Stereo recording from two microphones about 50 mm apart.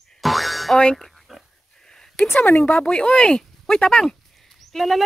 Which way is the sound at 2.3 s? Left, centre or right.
Left.